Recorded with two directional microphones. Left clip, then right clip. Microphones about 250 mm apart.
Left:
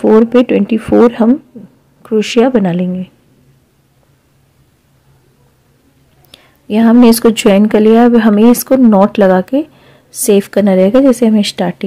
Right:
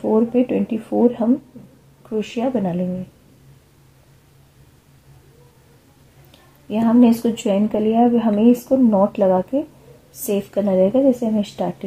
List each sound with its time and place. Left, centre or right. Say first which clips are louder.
0.0 s speech: left 10 dB; left
6.3 s speech: left 9 dB; left